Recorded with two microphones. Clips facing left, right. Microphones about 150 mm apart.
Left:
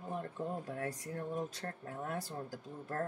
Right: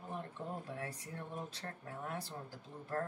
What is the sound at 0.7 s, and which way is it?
Speech, 40° left (ahead or behind).